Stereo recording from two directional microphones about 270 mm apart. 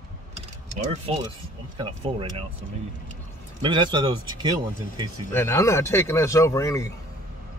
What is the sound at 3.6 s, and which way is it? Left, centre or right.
Speech, centre.